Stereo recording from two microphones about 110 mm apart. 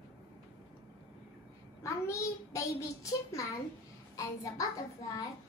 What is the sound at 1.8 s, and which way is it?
A child's voice, 25° left (ahead or behind).